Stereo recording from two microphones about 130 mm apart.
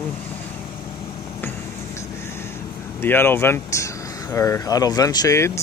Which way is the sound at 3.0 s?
15° left (ahead or behind).